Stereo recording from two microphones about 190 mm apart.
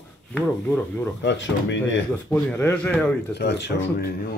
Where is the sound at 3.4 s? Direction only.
65° left (ahead or behind).